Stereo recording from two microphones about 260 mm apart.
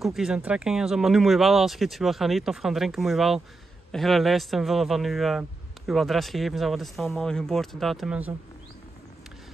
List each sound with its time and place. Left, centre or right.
0.0 s a man's voice: centre